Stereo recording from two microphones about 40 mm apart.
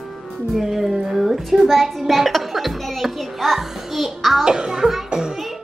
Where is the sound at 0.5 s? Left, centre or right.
Centre.